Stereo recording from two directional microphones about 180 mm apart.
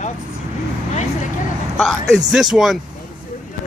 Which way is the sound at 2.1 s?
5° right (ahead or behind).